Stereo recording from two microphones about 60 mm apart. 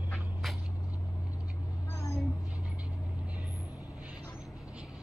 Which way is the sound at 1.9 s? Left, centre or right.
Left.